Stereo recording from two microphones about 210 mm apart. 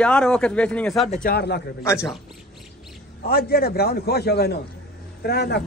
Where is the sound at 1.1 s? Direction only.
45° left (ahead or behind).